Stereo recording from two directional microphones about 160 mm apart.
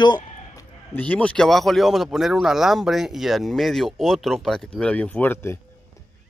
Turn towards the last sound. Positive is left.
turn(degrees=10)  # may be behind; listen again after turning